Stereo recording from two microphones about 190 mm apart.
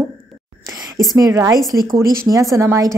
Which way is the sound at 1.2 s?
15° right (ahead or behind).